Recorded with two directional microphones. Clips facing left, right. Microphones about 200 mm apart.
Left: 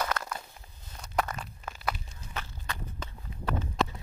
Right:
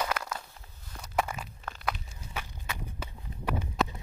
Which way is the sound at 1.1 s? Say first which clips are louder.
Even; 10° right (ahead or behind).